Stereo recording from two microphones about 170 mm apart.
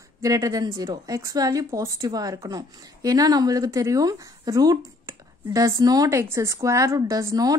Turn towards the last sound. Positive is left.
turn(degrees=-20)  # may be behind; listen again after turning